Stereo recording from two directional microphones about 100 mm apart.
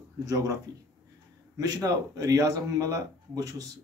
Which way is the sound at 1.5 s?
40° right (ahead or behind).